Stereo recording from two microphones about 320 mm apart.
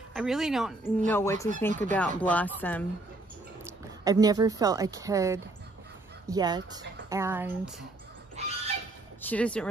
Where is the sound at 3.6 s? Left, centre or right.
Centre.